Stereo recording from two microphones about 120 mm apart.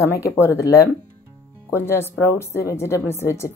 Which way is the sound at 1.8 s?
20° left (ahead or behind).